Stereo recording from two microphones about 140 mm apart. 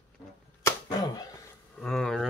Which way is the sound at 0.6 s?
25° left (ahead or behind).